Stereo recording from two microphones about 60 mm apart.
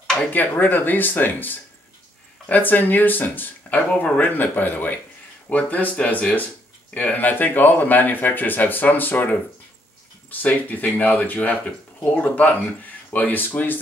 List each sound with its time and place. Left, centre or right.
0.3 s speech: left